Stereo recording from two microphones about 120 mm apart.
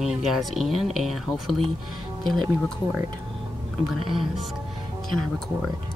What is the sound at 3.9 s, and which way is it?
Speech, centre (ahead or behind).